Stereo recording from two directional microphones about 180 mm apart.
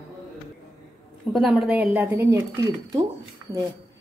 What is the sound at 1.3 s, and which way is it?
A woman's voice, 5° right (ahead or behind).